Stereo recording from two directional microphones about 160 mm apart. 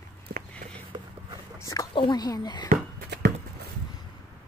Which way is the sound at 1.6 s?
20° left (ahead or behind).